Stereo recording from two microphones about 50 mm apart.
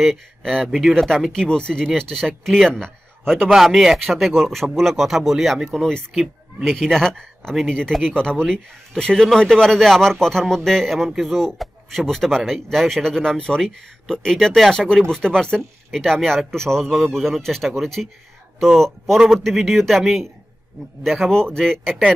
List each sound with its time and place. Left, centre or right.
0.0 s speech: centre
0.7 s speech: centre
0.9 s speech: centre
3.5 s speech: centre
5.8 s speech: centre
6.1 s speech: centre
21.3 s speech: centre